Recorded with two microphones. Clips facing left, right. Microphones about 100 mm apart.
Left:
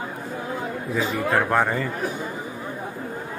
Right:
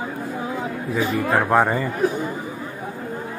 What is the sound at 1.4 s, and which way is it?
Speech, 15° right (ahead or behind).